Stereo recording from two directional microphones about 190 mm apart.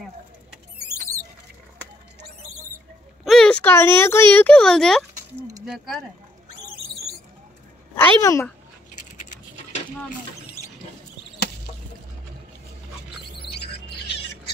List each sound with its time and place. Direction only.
3.3 s speech: 5° left (ahead or behind)
7.9 s speech: 15° left (ahead or behind)
9.1 s a sound: 40° left (ahead or behind)
13.6 s bird: 30° left (ahead or behind)